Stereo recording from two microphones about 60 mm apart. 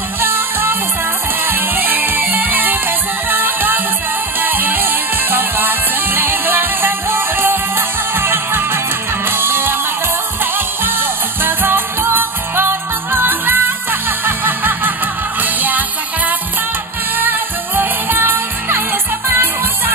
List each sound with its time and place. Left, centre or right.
0.2 s music: right
17.2 s music: right